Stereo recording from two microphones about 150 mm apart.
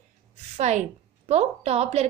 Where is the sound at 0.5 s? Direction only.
50° right (ahead or behind).